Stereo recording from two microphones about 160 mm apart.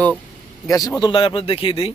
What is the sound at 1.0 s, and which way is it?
Speech, 30° left (ahead or behind).